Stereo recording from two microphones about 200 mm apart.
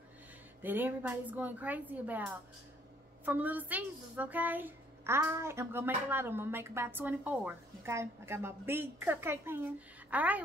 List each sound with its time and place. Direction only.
0.6 s a child's voice: 10° right (ahead or behind)